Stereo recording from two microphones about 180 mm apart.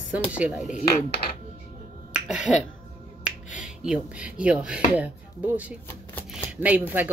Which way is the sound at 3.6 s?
5° right (ahead or behind).